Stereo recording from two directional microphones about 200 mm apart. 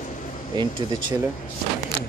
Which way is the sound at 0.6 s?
20° right (ahead or behind).